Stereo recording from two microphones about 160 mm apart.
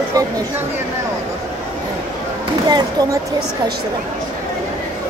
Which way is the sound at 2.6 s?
25° right (ahead or behind).